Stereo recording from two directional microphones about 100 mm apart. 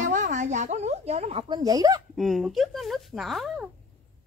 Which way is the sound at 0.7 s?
90° right.